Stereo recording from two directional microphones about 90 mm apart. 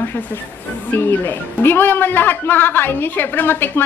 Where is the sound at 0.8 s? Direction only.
25° left (ahead or behind).